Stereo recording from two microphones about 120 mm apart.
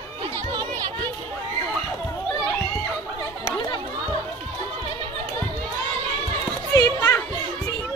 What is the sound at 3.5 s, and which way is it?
Chatter, 35° left (ahead or behind).